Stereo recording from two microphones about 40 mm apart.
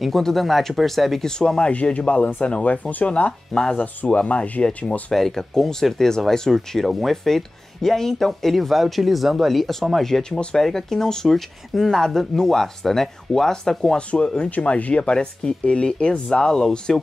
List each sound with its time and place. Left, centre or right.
0.1 s speech: centre
1.7 s speech: left
3.1 s speech: left
3.7 s speech: left
5.1 s speech: centre
13.9 s speech: left